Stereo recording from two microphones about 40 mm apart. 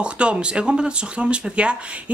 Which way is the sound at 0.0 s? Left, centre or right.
Right.